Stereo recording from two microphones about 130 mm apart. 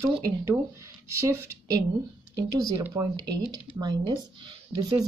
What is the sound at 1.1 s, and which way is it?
Speech, 20° right (ahead or behind).